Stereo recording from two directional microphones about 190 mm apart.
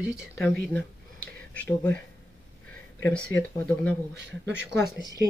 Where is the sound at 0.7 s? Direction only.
5° left (ahead or behind).